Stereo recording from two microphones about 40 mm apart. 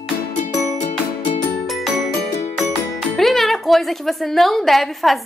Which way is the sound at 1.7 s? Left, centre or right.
Centre.